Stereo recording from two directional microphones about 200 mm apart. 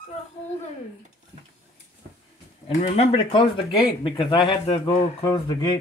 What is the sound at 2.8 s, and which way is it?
Speech, 30° left (ahead or behind).